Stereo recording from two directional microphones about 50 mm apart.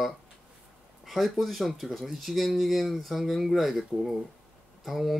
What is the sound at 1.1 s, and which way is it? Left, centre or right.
Speech, centre.